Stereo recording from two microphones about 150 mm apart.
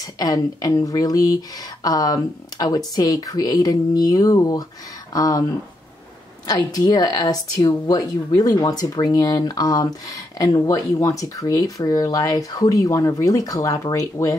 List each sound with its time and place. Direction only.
0.0 s speech: 25° left (ahead or behind)
6.4 s speech: 25° left (ahead or behind)